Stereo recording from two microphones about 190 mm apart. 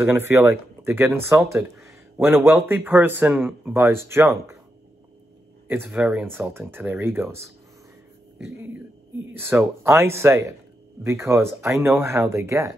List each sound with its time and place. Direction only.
0.0 s speech: 10° right (ahead or behind)
5.7 s speech: 10° right (ahead or behind)